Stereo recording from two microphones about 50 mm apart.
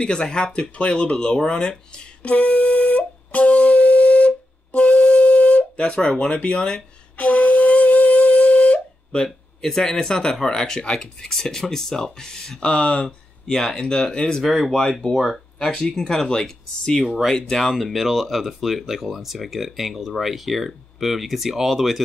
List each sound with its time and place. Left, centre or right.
0.0 s speech: centre
2.3 s music: left
7.2 s music: left
9.1 s a sound: centre
9.7 s speech: centre
15.7 s speech: centre